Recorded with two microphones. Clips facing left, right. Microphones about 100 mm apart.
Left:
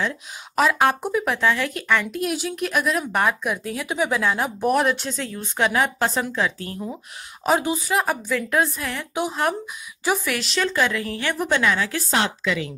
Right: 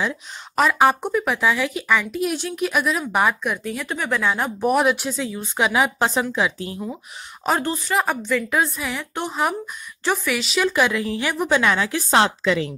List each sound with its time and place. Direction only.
0.0 s speech: centre (ahead or behind)
7.4 s speech: 10° left (ahead or behind)
10.7 s speech: 15° right (ahead or behind)
11.3 s speech: 5° right (ahead or behind)
11.6 s speech: 20° right (ahead or behind)
12.1 s a woman's voice: 30° right (ahead or behind)